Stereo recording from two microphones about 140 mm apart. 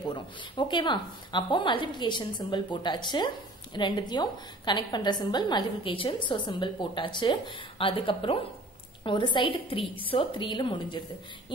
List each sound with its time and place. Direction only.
0.0 s a woman's voice: 35° left (ahead or behind)